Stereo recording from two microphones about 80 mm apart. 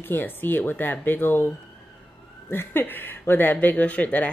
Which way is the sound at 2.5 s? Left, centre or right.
Left.